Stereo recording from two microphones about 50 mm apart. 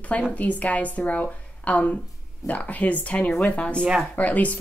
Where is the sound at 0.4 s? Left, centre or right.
Left.